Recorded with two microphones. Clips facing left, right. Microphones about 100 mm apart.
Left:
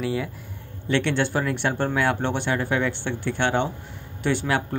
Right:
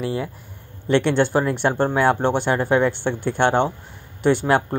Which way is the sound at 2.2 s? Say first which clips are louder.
Right 5 dB; 40° right (ahead or behind).